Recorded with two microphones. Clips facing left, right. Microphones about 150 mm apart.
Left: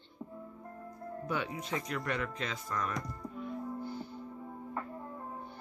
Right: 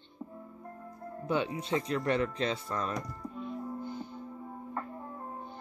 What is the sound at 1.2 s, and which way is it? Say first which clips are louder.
Speech: right 6 dB; 25° right (ahead or behind).